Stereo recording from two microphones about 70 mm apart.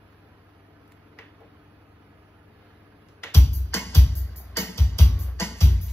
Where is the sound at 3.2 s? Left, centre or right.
Left.